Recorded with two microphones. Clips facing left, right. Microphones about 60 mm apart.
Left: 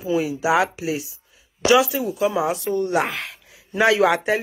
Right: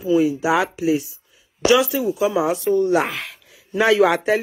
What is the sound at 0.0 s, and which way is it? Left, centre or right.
Speech, left.